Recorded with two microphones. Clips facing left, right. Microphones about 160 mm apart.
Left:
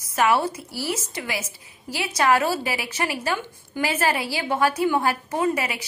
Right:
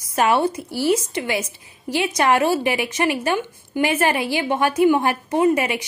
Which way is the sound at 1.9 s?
20° right (ahead or behind).